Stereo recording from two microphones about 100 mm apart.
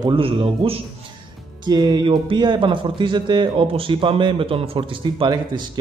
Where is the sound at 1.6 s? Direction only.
45° right (ahead or behind).